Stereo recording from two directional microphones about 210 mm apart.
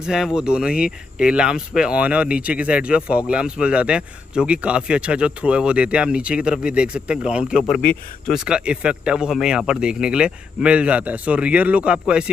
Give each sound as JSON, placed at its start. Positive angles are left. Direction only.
{"t": 0.0, "sound": "speech", "side_deg": -5}